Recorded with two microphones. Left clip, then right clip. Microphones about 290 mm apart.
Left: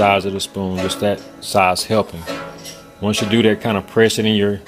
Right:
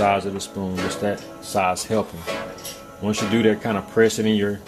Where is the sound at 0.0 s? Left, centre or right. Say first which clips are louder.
Left 5 dB; left.